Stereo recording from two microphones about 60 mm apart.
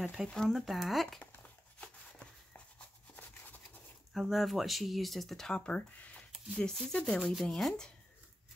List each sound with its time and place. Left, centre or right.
0.0 s speech: centre
1.2 s a sound: left
4.1 s speech: centre
5.5 s speech: centre
6.6 s speech: centre